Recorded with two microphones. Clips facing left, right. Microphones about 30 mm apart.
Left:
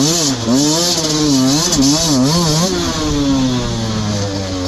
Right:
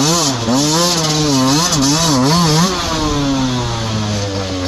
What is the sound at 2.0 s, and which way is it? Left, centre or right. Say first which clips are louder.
Vehicle: right 1 dB; centre.